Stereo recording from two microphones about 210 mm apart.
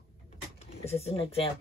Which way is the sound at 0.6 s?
30° left (ahead or behind).